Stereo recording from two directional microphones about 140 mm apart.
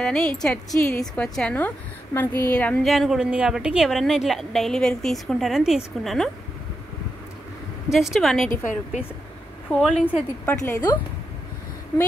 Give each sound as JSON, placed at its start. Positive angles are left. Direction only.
{"t": 0.0, "sound": "a woman's voice", "side_deg": 5}
{"t": 2.9, "sound": "a woman's voice", "side_deg": 0}
{"t": 7.9, "sound": "a woman's voice", "side_deg": 0}
{"t": 9.7, "sound": "a woman's voice", "side_deg": 0}
{"t": 10.0, "sound": "a woman's voice", "side_deg": 15}